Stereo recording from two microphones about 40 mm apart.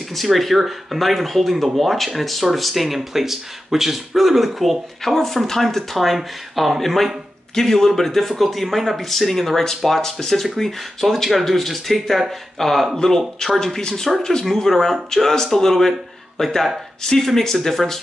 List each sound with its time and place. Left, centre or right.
0.1 s speech: centre
7.5 s speech: centre